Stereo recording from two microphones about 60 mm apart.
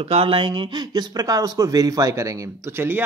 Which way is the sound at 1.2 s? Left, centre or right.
Right.